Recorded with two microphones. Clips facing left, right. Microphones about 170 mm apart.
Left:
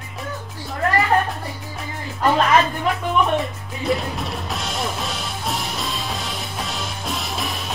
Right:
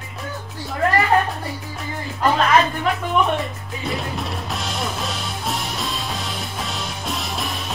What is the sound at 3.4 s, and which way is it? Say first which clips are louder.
Music: left 1 dB; centre (ahead or behind).